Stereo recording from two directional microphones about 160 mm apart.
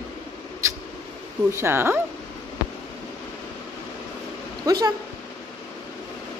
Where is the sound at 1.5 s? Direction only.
15° right (ahead or behind).